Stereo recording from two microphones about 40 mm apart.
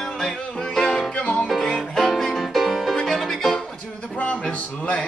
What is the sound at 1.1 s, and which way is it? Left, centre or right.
Music, left.